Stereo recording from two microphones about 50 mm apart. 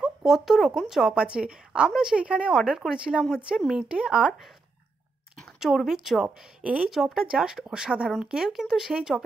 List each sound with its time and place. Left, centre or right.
0.0 s speech: centre
1.1 s a woman's voice: centre
5.9 s a woman's voice: centre
6.2 s a woman's voice: right
6.9 s speech: centre